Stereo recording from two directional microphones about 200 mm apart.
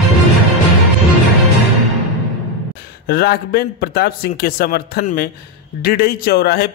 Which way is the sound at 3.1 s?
50° left (ahead or behind).